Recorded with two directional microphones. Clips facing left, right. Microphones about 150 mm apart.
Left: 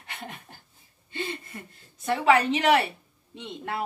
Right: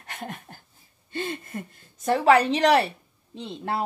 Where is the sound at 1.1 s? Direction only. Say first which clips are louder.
Right 3 dB; 45° right (ahead or behind).